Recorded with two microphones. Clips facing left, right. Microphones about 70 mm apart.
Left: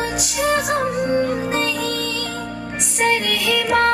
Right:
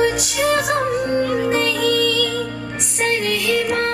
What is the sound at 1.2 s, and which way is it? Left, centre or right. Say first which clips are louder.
Music: right 1 dB; right.